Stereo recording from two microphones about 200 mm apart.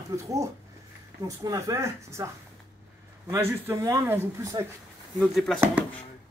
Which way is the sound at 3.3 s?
10° right (ahead or behind).